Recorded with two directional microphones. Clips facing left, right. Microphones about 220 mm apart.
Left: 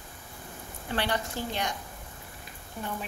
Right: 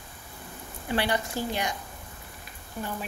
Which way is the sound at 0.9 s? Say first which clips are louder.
Right 3 dB; 10° right (ahead or behind).